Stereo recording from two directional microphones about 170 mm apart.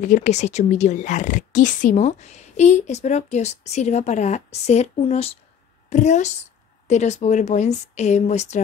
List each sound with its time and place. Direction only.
0.0 s a woman's voice: 45° left (ahead or behind)